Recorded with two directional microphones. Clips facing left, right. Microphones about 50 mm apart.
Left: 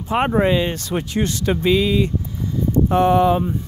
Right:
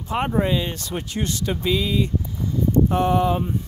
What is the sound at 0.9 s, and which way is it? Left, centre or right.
Speech, left.